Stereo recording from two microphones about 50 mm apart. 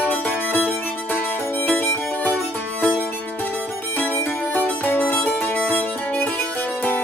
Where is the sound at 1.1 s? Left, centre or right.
Left.